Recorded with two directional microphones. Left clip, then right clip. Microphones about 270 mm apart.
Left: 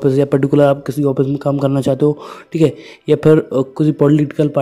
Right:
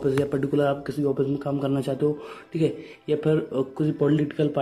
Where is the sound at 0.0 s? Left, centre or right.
Left.